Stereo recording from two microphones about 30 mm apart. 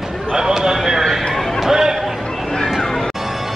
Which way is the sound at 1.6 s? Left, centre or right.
Centre.